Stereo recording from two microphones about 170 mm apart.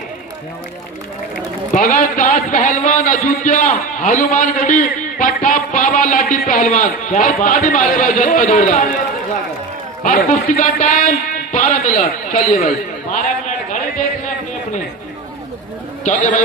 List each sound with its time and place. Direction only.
1.7 s a man's voice: 50° left (ahead or behind)
10.0 s a man's voice: 50° left (ahead or behind)
16.0 s a man's voice: 45° left (ahead or behind)